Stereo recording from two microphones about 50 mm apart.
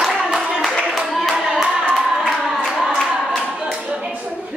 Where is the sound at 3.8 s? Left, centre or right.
Centre.